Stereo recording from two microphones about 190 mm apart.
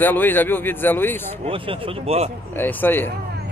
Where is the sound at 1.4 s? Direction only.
30° right (ahead or behind).